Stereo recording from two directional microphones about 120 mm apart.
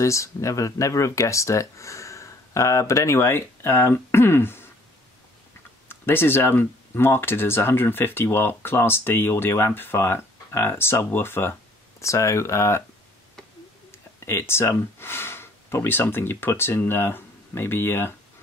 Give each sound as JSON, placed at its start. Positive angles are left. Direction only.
{"t": 0.0, "sound": "speech", "side_deg": 25}
{"t": 5.9, "sound": "speech", "side_deg": 20}
{"t": 14.2, "sound": "speech", "side_deg": 20}